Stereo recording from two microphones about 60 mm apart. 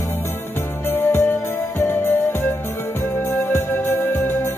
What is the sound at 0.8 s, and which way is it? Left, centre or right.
Music, left.